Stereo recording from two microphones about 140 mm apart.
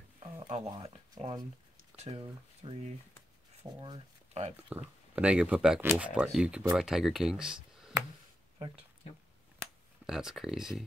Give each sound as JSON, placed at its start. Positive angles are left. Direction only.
{"t": 0.2, "sound": "a sound", "side_deg": -40}
{"t": 2.0, "sound": "speech", "side_deg": -45}
{"t": 3.6, "sound": "speech", "side_deg": -20}
{"t": 4.3, "sound": "speech", "side_deg": -50}
{"t": 4.6, "sound": "speech", "side_deg": -10}
{"t": 10.0, "sound": "speech", "side_deg": -5}